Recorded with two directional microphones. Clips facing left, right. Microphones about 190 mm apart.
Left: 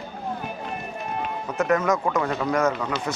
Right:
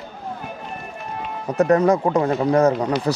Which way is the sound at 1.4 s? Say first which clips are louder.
Right 7 dB; 35° right (ahead or behind).